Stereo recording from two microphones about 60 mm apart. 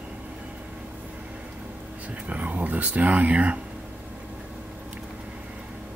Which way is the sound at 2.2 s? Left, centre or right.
Right.